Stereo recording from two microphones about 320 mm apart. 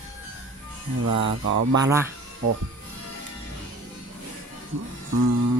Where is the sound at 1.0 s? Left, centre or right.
Right.